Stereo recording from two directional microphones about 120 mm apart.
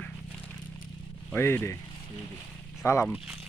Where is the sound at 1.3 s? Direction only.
15° left (ahead or behind).